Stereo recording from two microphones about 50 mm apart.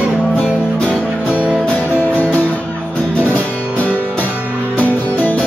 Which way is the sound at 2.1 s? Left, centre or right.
Left.